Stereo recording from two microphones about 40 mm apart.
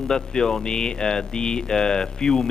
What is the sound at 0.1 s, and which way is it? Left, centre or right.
Speech, centre.